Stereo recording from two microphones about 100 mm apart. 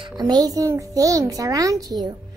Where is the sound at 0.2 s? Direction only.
45° right (ahead or behind).